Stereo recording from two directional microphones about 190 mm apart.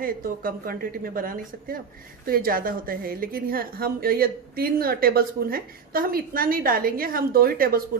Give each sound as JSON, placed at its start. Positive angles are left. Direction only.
{"t": 0.0, "sound": "a woman's voice", "side_deg": -50}